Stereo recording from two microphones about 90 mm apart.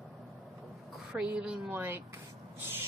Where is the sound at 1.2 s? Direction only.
15° right (ahead or behind).